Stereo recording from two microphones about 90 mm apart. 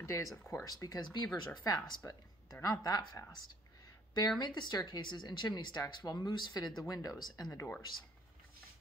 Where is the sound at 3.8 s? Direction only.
45° left (ahead or behind).